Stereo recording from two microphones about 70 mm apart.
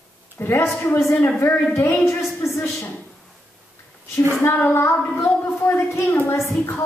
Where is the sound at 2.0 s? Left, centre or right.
Left.